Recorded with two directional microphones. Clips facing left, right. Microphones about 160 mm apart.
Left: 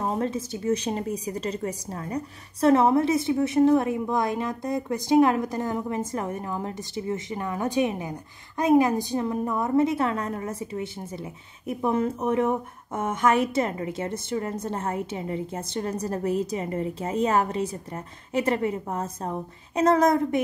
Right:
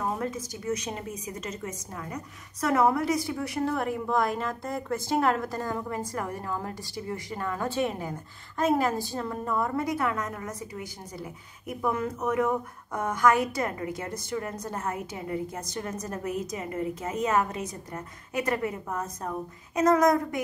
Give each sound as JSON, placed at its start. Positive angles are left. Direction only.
{"t": 0.0, "sound": "a woman's voice", "side_deg": 30}